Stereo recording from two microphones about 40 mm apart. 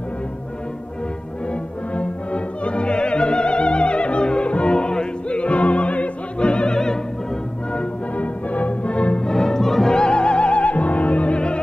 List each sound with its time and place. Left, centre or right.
1.5 s opera: left
8.2 s music: left
9.2 s music: centre
9.9 s music: left